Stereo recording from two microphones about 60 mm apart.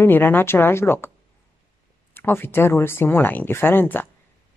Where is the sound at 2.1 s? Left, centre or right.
Left.